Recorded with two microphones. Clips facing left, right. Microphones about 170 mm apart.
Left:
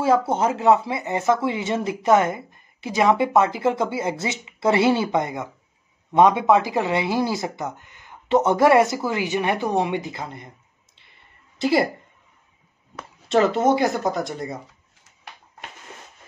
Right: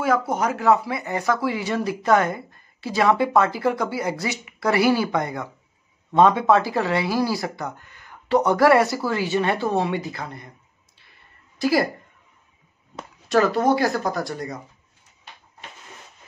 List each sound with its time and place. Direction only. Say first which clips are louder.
0.0 s speech: left 2 dB; 30° left (ahead or behind)
11.5 s a woman's voice: left 1 dB; 25° left (ahead or behind)
13.3 s speech: left 1 dB; 25° left (ahead or behind)